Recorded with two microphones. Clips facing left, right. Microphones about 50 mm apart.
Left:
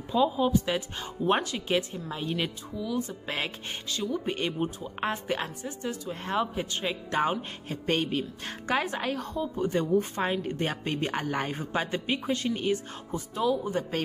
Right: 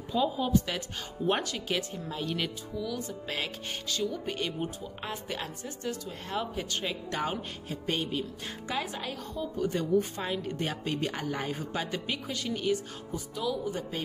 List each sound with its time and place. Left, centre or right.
0.1 s speech: centre; by 9.4 s left
9.4 s speech: left